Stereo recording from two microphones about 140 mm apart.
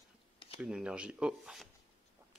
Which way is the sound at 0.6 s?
5° right (ahead or behind).